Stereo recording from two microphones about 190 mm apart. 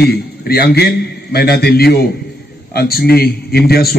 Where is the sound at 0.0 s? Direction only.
55° left (ahead or behind).